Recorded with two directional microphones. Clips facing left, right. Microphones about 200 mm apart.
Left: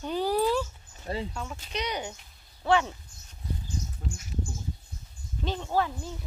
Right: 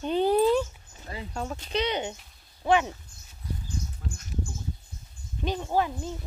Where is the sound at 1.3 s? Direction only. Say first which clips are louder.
Right 5 dB; 40° right (ahead or behind); by 3.0 s 15° right (ahead or behind).